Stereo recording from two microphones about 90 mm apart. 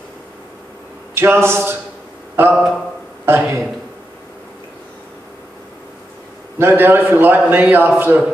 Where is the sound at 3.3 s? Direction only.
25° right (ahead or behind).